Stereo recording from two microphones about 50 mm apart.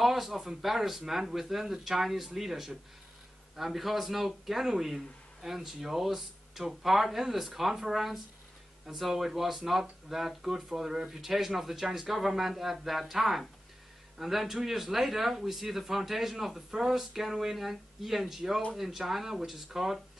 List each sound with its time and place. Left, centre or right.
0.0 s speech: centre